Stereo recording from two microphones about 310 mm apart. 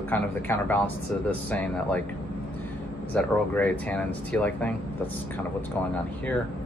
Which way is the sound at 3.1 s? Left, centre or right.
Centre.